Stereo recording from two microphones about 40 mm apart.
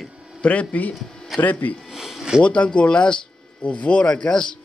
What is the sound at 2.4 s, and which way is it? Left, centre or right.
A man's voice, left.